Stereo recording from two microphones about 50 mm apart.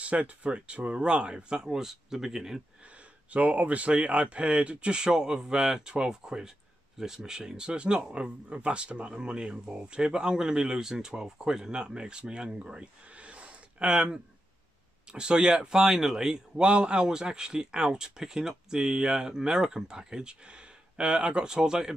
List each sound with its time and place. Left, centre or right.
0.0 s speech: right; by 2.6 s centre
3.3 s speech: right
15.1 s speech: centre
16.6 s speech: right